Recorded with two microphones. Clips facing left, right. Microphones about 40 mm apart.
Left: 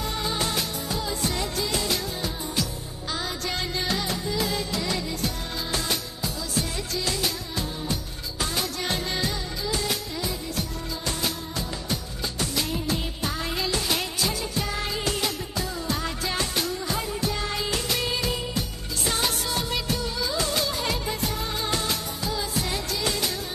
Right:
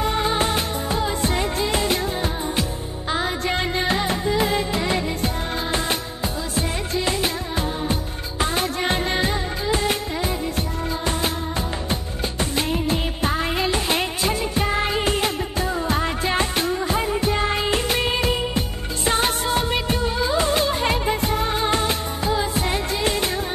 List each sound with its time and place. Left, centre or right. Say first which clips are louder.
0.0 s music: right 7 dB; right
11.9 s music: right 4 dB; right
19.0 s music of bollywood: right 6 dB; right